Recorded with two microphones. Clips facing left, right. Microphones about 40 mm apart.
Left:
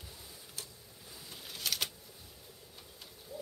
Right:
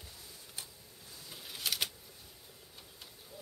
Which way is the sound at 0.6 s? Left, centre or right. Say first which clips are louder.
Even; centre.